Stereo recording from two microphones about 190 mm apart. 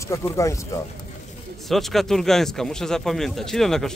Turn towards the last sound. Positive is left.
turn(degrees=0)  # may be behind; listen again after turning